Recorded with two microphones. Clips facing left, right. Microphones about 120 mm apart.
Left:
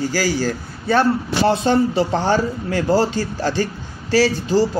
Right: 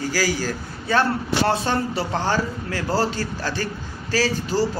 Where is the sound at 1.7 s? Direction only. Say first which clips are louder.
Left 7 dB; 25° left (ahead or behind).